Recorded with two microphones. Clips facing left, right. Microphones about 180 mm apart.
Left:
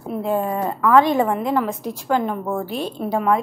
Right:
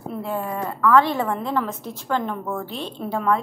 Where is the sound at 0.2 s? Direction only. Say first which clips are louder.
Left 6 dB; 20° left (ahead or behind).